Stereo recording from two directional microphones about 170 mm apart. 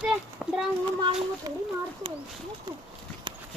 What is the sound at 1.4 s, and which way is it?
Speech, 25° right (ahead or behind).